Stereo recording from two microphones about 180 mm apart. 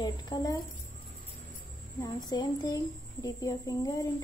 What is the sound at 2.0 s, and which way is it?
Speech, 20° left (ahead or behind).